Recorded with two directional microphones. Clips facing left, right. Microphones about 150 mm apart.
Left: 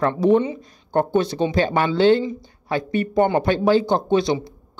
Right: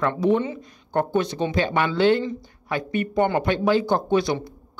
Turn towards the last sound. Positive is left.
turn(degrees=25)  # may be behind; listen again after turning